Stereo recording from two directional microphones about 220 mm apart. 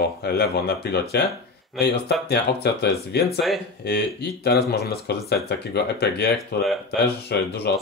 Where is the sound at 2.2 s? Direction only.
50° left (ahead or behind).